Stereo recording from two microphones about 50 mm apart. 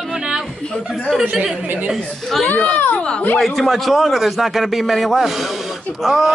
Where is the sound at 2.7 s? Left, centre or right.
Left.